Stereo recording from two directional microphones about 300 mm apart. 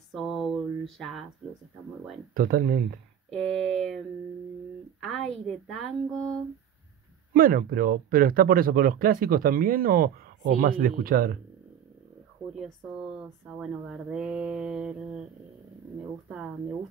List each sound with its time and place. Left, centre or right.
0.1 s a sound: centre
2.3 s speech: right
3.3 s speech: centre
5.0 s speech: centre
7.3 s speech: right
12.5 s speech: centre